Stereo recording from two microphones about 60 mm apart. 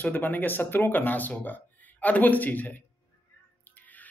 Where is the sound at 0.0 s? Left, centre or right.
Left.